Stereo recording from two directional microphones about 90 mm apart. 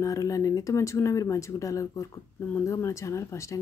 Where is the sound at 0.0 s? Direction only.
40° left (ahead or behind).